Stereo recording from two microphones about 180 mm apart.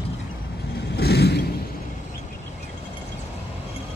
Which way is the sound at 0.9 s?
65° left (ahead or behind).